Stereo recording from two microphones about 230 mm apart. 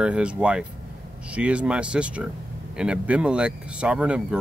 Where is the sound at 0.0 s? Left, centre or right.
Centre.